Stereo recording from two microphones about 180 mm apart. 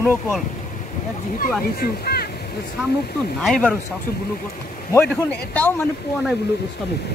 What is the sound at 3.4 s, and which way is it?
Speech, 5° left (ahead or behind).